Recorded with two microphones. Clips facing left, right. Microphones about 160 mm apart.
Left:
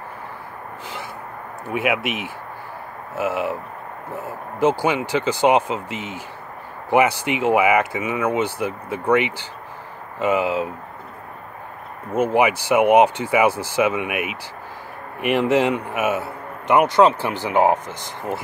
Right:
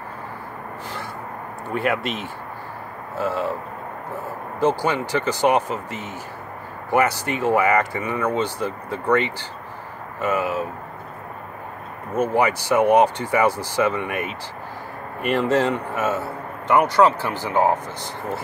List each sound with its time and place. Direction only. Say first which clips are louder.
1.7 s speech: left 1 dB; 10° left (ahead or behind)
3.2 s speech: left 1 dB; 15° left (ahead or behind)
4.6 s speech: left 2 dB; 15° left (ahead or behind)
12.2 s speech: left 2 dB; 15° left (ahead or behind)